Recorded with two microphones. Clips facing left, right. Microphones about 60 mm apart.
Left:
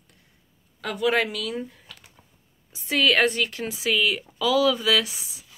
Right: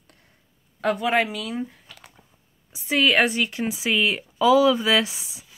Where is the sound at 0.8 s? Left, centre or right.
Right.